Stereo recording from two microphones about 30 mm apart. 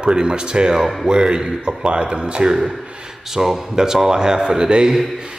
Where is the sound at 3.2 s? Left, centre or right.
Centre; by 4.9 s right.